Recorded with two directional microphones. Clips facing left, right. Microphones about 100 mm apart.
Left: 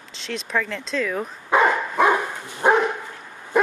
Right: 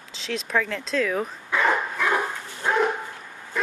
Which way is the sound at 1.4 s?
50° left (ahead or behind).